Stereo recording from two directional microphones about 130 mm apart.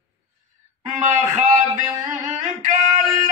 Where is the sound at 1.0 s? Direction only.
70° right (ahead or behind).